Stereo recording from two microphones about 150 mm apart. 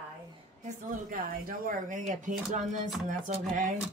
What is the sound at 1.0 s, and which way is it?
Speech, 70° right (ahead or behind).